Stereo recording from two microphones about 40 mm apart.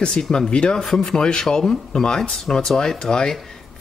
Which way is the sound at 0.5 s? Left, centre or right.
Left.